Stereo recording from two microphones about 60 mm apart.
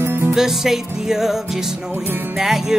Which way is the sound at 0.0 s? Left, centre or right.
Right.